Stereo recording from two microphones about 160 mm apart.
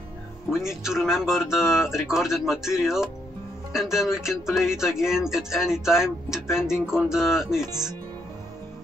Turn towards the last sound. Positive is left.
turn(degrees=-5)  # may be behind; listen again after turning